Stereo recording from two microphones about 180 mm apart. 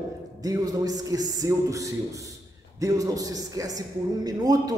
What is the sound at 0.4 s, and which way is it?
A man's voice, 20° right (ahead or behind).